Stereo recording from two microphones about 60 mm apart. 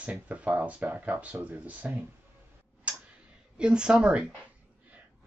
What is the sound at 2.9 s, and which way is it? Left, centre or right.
Tick-tock, right.